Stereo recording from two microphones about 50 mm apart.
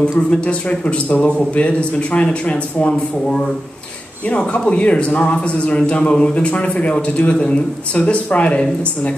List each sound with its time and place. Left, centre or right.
0.3 s a man's voice: left
2.5 s speech: centre
4.3 s a man's voice: left